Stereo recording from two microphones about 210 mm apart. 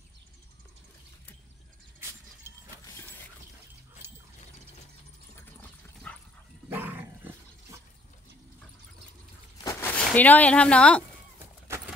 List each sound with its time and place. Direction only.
2.0 s vehicle: 10° right (ahead or behind)
5.4 s a sound: 10° left (ahead or behind)
6.7 s dog: 10° right (ahead or behind)
9.6 s a sound: 15° left (ahead or behind)
9.9 s speech: 5° left (ahead or behind)
11.7 s keys jangling: 15° right (ahead or behind)